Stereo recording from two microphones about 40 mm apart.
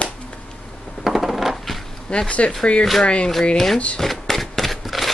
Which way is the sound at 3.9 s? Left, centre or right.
Centre.